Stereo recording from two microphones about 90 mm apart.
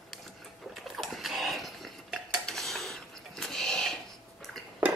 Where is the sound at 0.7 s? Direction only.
Centre (ahead or behind).